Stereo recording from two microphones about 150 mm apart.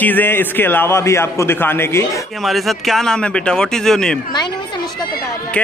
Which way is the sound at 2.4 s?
Centre (ahead or behind).